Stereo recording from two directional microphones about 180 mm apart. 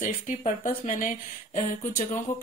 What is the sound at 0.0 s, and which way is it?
Speech, 45° left (ahead or behind).